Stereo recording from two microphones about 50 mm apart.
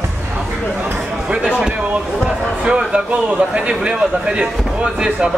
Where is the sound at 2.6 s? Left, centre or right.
Centre.